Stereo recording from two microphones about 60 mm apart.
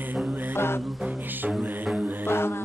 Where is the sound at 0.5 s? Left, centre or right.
Left.